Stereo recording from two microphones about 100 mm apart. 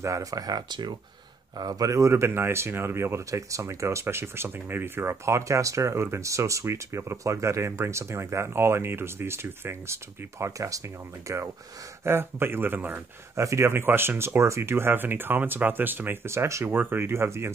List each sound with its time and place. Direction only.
0.0 s speech: 35° right (ahead or behind)
1.6 s speech: 35° right (ahead or behind); by 13.0 s 20° right (ahead or behind)
13.4 s speech: 30° right (ahead or behind)